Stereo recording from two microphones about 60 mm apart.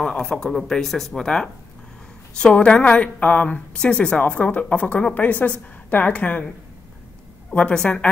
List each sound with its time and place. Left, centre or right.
0.0 s a woman's voice: centre
7.5 s speech: centre